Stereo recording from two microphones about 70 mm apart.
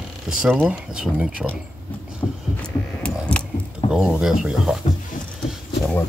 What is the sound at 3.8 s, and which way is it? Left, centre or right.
Speech, centre.